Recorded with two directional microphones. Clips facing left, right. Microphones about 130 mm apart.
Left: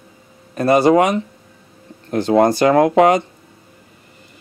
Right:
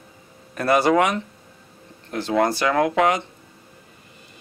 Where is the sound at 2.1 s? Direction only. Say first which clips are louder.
Left 7 dB; 40° left (ahead or behind).